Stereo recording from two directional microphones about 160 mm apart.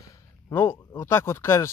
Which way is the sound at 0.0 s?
15° left (ahead or behind).